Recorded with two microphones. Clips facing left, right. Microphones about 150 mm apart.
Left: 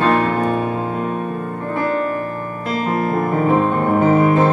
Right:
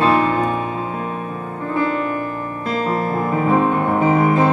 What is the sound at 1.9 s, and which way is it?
Music, 40° left (ahead or behind).